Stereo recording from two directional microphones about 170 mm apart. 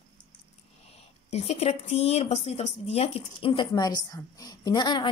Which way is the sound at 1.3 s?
35° left (ahead or behind).